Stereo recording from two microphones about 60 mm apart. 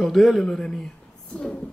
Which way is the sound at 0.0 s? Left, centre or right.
Centre.